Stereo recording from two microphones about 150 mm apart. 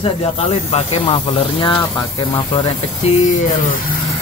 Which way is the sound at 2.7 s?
50° left (ahead or behind).